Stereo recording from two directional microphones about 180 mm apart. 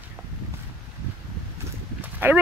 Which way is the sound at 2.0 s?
10° right (ahead or behind).